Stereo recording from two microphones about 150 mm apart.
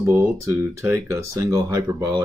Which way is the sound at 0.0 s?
15° right (ahead or behind).